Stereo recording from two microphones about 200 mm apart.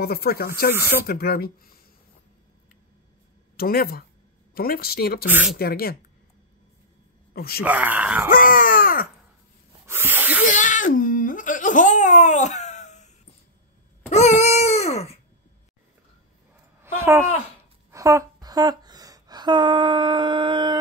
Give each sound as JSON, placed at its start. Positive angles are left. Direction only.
{"t": 0.0, "sound": "speech", "side_deg": 50}
{"t": 3.5, "sound": "speech", "side_deg": 50}
{"t": 5.2, "sound": "speech", "side_deg": -5}
{"t": 5.6, "sound": "speech", "side_deg": 50}
{"t": 7.3, "sound": "speech", "side_deg": 50}
{"t": 7.6, "sound": "speech", "side_deg": -5}
{"t": 8.3, "sound": "a sound", "side_deg": 45}
{"t": 9.8, "sound": "snake", "side_deg": -10}
{"t": 10.5, "sound": "giggle", "side_deg": 40}
{"t": 14.1, "sound": "dog", "side_deg": 35}
{"t": 16.8, "sound": "a sound", "side_deg": -10}
{"t": 17.9, "sound": "speech", "side_deg": -15}